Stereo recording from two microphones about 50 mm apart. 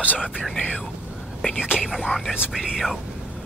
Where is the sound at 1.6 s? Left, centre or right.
Centre.